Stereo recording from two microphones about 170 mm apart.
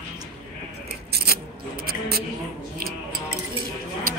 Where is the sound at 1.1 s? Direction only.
65° right (ahead or behind).